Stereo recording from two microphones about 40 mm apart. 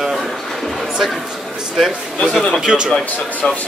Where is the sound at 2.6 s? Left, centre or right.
Centre.